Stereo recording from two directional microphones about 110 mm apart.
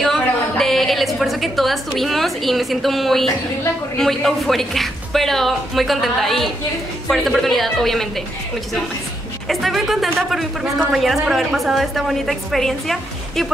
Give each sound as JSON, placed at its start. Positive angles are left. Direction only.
{"t": 0.0, "sound": "a sound", "side_deg": 0}
{"t": 4.0, "sound": "a woman's voice", "side_deg": 0}
{"t": 9.5, "sound": "a woman's voice", "side_deg": 0}